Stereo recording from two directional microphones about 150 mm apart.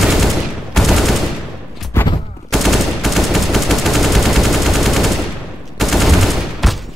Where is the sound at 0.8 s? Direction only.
Centre (ahead or behind).